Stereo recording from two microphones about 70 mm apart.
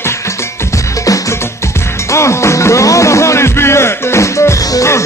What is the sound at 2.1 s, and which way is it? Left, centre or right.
Music, left.